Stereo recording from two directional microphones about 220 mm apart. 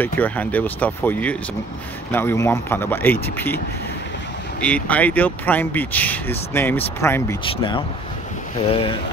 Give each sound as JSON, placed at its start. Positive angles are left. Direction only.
{"t": 0.0, "sound": "speech", "side_deg": 5}